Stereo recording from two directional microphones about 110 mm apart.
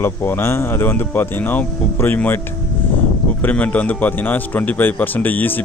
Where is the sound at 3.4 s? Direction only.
15° left (ahead or behind).